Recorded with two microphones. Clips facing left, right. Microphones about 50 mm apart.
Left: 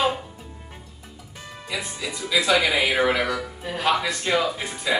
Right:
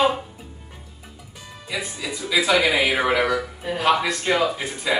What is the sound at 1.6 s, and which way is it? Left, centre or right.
Speech, centre.